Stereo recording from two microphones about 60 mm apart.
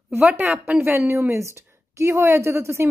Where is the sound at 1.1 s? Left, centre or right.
Right.